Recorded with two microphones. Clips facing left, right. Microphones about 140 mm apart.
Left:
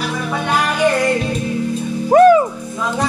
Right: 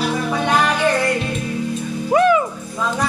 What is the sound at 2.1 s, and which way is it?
Music, 45° left (ahead or behind).